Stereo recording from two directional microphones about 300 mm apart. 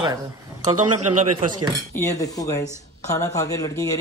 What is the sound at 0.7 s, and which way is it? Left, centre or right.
Speech, right.